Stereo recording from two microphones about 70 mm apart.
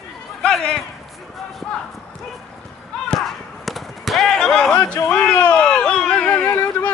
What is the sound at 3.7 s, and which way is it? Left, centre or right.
Firecracker, centre.